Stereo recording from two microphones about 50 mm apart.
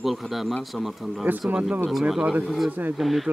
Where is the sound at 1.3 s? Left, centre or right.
Right.